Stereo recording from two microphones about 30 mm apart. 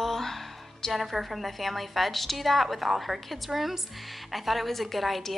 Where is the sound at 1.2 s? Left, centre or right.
Centre.